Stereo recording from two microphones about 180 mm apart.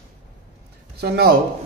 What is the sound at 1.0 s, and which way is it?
Speech, 60° right (ahead or behind).